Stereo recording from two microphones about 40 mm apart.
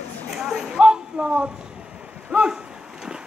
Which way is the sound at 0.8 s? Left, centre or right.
Right.